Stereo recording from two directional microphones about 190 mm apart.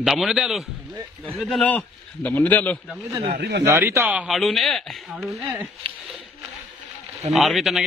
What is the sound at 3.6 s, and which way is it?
Speech, 15° right (ahead or behind).